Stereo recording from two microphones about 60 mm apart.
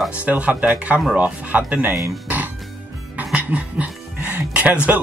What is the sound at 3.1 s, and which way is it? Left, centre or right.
Music, right.